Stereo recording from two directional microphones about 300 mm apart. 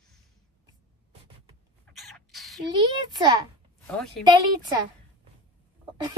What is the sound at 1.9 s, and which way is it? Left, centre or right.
Rodents, centre.